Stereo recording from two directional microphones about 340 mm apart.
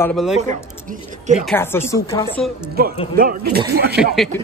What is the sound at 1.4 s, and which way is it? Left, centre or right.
Speech, centre.